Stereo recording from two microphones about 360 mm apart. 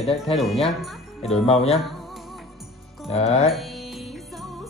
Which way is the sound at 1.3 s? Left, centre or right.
Centre.